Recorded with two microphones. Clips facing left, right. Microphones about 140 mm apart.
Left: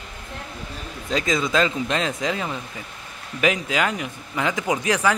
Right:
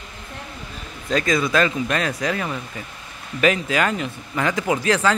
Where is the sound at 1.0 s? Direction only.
20° left (ahead or behind).